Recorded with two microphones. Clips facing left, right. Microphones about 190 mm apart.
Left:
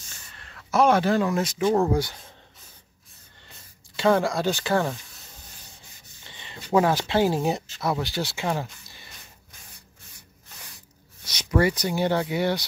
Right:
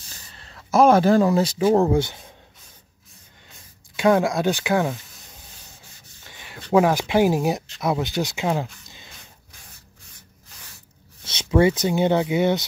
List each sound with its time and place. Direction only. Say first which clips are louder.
0.1 s a sound: right 3 dB; 30° right (ahead or behind)
0.7 s speech: right 5 dB; 40° right (ahead or behind)
1.8 s speech: right 3 dB; 25° right (ahead or behind)
3.9 s speech: right 3 dB; 15° right (ahead or behind)
6.2 s a sound: right 2 dB; 10° right (ahead or behind)
6.7 s speech: right 3 dB; 10° right (ahead or behind)
11.2 s speech: right 4 dB; 25° right (ahead or behind)